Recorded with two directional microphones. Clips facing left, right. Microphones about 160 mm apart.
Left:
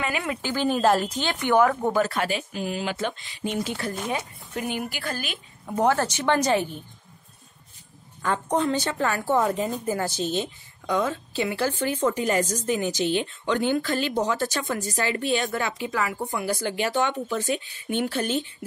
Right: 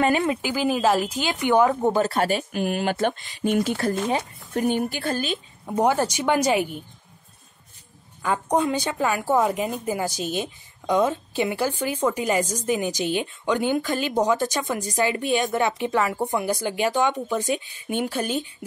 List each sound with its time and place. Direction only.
0.0 s speech: 35° right (ahead or behind)
0.4 s a woman's voice: 10° right (ahead or behind); by 2.2 s 30° right (ahead or behind)
2.2 s speech: 55° right (ahead or behind)
4.1 s speech: 35° right (ahead or behind); by 6.8 s 10° right (ahead or behind)
8.2 s a woman's voice: 10° right (ahead or behind)